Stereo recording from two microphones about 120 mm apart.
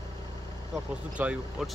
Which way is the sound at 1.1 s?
10° right (ahead or behind).